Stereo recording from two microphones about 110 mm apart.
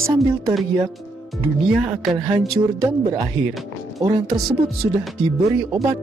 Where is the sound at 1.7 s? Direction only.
5° right (ahead or behind).